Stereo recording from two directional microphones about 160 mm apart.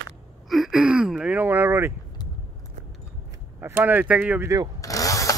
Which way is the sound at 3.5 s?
15° right (ahead or behind).